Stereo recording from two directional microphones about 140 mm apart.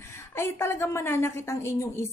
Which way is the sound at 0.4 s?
15° left (ahead or behind).